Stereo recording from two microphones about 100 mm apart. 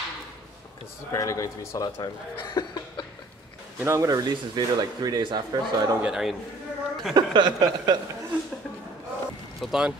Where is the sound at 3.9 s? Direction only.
35° right (ahead or behind).